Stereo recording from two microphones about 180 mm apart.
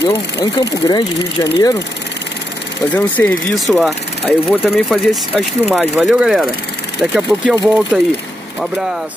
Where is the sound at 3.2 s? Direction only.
15° left (ahead or behind).